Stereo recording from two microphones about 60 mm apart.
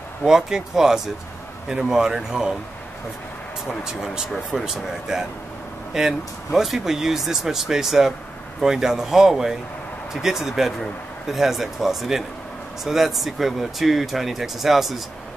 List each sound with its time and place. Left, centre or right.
0.2 s speech: centre
3.8 s speech: centre